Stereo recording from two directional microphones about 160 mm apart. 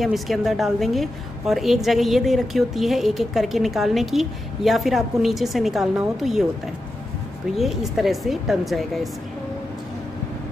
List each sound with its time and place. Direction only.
0.0 s a woman's voice: centre (ahead or behind)
7.5 s a woman's voice: centre (ahead or behind)